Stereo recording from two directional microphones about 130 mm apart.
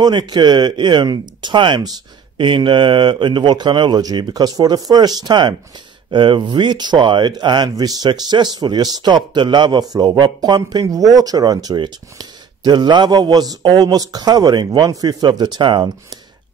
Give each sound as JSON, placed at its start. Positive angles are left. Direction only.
{"t": 0.0, "sound": "speech", "side_deg": -35}